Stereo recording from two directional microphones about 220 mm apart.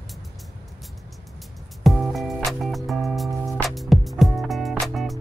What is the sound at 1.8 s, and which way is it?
Music, centre (ahead or behind).